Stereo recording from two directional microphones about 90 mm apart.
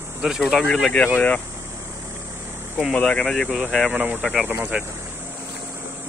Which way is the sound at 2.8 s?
10° left (ahead or behind).